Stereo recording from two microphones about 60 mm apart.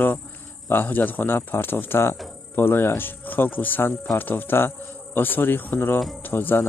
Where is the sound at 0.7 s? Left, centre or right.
Left.